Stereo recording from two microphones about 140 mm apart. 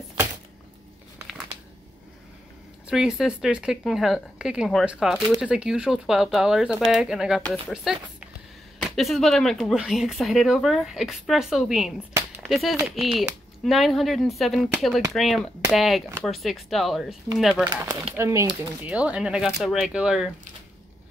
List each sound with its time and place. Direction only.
2.9 s speech: 5° right (ahead or behind)
18.1 s speech: 20° right (ahead or behind)
18.9 s speech: 10° right (ahead or behind)